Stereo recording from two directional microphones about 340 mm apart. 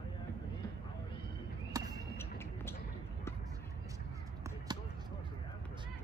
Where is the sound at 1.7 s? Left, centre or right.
Centre.